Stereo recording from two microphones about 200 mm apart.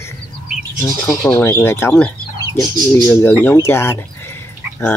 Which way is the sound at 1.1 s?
10° left (ahead or behind).